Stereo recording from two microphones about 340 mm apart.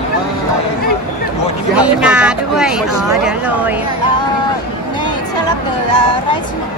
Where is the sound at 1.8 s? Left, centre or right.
Centre.